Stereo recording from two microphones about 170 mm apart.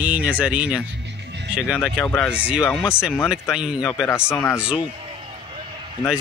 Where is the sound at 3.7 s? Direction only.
20° left (ahead or behind).